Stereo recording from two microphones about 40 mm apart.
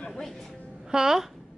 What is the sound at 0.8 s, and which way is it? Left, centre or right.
Speech, centre.